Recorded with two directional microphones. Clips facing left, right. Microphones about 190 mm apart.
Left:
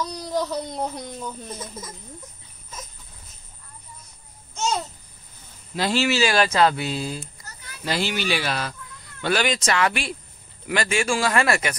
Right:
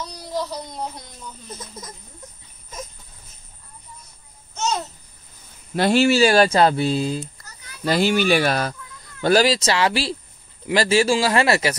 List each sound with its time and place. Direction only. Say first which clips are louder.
0.3 s speech: left 1 dB; 55° left (ahead or behind)
5.8 s speech: right 6 dB; 55° right (ahead or behind)
6.1 s speech: right 5 dB; 35° right (ahead or behind)
7.8 s speech: right 7 dB; 45° right (ahead or behind)
9.2 s speech: right 6 dB; 35° right (ahead or behind)